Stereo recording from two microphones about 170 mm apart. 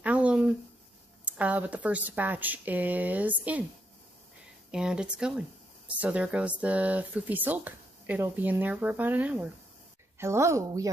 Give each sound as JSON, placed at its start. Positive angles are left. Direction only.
{"t": 0.0, "sound": "a sound", "side_deg": -10}
{"t": 1.2, "sound": "speech", "side_deg": -10}
{"t": 4.6, "sound": "speech", "side_deg": -5}